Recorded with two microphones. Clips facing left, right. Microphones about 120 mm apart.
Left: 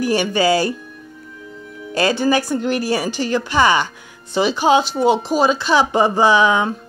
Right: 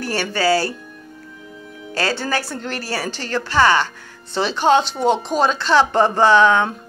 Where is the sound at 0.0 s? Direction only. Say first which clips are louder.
Left 4 dB; 15° left (ahead or behind).